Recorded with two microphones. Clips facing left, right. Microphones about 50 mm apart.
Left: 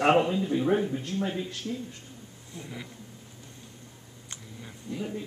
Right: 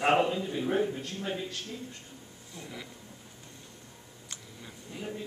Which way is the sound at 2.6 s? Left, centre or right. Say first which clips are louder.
Left 2 dB; centre.